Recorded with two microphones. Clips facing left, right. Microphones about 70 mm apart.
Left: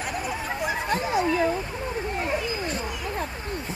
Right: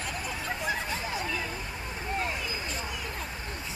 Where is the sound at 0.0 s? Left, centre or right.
Centre.